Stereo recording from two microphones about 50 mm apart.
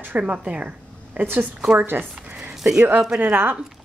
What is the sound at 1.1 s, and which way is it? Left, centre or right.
Speech, right.